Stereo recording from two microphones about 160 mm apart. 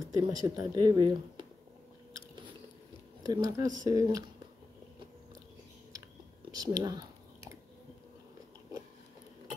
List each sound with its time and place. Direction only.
0.0 s speech: 25° right (ahead or behind)
3.3 s speech: 25° right (ahead or behind)
6.5 s chewing: 25° right (ahead or behind)